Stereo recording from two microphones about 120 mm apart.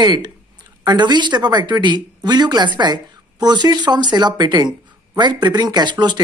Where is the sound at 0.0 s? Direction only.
35° right (ahead or behind).